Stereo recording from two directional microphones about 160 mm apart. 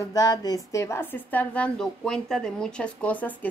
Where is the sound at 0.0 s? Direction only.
25° left (ahead or behind).